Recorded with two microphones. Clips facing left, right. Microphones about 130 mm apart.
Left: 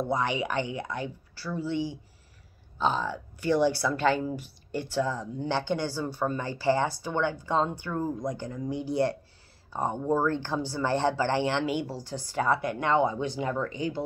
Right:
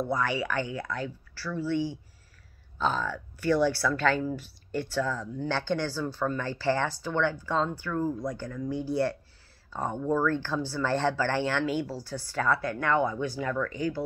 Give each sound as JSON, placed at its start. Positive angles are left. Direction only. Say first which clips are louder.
{"t": 0.0, "sound": "speech", "louder": "left 1 dB", "side_deg": 20}